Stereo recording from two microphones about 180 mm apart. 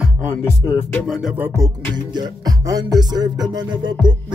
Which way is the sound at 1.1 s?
5° right (ahead or behind).